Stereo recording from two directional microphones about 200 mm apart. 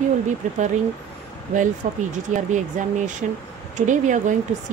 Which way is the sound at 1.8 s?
35° right (ahead or behind).